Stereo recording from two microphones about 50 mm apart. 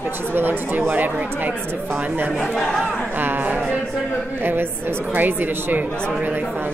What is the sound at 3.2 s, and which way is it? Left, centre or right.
A woman's voice, right.